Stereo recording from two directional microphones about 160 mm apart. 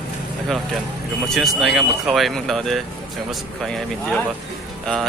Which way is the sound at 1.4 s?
Centre (ahead or behind).